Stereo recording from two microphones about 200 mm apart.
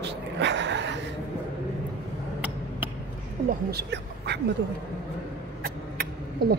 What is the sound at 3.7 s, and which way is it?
Speech, 55° right (ahead or behind).